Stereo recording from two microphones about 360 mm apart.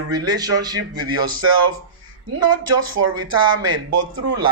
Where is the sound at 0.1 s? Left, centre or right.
Right.